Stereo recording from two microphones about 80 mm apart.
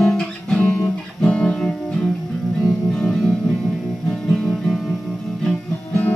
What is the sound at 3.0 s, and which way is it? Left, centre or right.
Music, centre.